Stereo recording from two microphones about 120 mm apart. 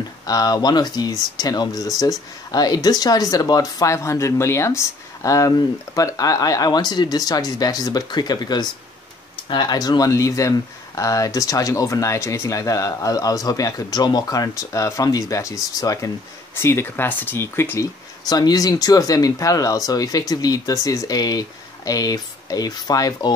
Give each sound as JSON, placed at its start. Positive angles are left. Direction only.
{"t": 0.3, "sound": "speech", "side_deg": 30}
{"t": 18.2, "sound": "speech", "side_deg": 35}